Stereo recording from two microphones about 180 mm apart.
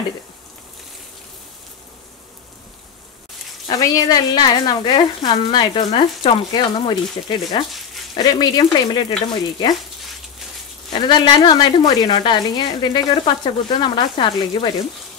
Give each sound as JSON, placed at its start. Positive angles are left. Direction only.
{"t": 3.6, "sound": "speech", "side_deg": 20}
{"t": 10.9, "sound": "speech", "side_deg": 25}